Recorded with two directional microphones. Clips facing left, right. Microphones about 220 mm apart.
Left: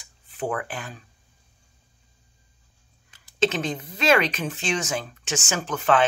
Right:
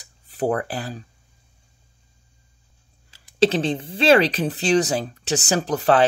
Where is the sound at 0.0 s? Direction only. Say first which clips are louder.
Right 6 dB; 40° right (ahead or behind).